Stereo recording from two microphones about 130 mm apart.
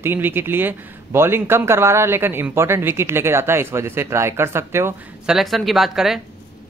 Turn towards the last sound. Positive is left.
turn(degrees=-5)  # may be behind; listen again after turning